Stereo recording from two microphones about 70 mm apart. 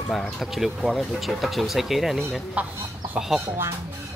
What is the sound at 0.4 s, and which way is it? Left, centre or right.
Speech, centre.